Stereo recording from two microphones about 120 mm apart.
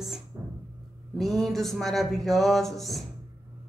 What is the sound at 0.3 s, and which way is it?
Music, 25° right (ahead or behind).